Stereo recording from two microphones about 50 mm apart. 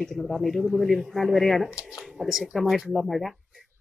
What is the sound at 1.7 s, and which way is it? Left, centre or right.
Speech, centre.